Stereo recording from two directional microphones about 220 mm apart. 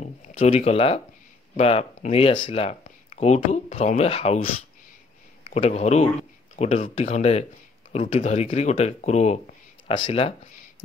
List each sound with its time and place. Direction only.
0.0 s speech: 30° left (ahead or behind)